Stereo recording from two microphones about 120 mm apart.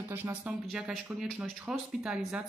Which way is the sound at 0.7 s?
Centre (ahead or behind).